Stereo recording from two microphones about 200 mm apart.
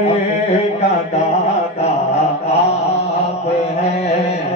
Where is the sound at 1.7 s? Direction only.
30° left (ahead or behind).